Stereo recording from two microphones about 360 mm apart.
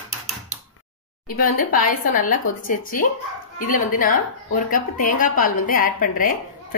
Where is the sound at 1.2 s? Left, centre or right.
Left.